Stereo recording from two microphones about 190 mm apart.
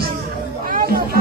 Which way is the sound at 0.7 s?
50° right (ahead or behind).